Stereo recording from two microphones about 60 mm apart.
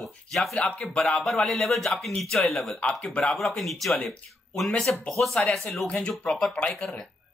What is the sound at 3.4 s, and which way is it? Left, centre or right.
Speech, centre.